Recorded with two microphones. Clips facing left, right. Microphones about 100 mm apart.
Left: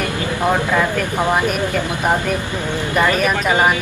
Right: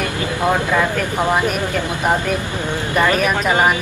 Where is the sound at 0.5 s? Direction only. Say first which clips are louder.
Even; centre (ahead or behind).